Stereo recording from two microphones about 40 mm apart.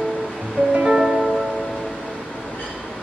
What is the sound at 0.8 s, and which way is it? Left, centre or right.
Music, centre.